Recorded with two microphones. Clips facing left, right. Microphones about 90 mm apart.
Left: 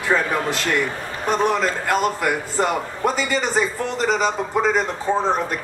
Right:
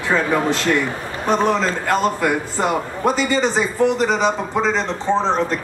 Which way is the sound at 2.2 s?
15° right (ahead or behind).